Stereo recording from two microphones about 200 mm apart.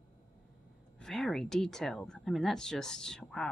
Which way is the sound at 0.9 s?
Centre (ahead or behind).